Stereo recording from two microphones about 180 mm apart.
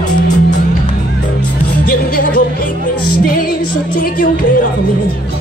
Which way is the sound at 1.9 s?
55° left (ahead or behind).